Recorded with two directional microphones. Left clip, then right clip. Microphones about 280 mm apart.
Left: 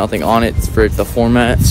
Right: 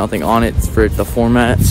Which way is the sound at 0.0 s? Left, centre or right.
Centre.